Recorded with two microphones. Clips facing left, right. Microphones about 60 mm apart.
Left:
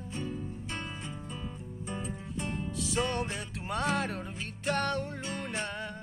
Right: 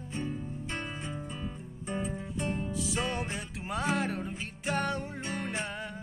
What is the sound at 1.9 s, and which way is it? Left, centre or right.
Music, centre.